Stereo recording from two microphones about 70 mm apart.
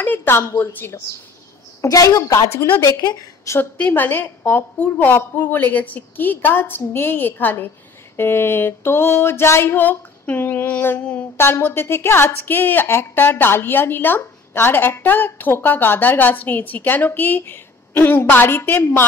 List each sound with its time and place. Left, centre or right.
0.0 s a woman's voice: left
1.8 s a woman's voice: left
3.7 s a woman's voice: left
11.0 s a sound: centre
11.3 s a woman's voice: left